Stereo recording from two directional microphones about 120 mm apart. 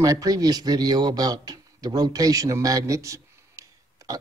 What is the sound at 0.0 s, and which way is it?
Speech, 30° right (ahead or behind).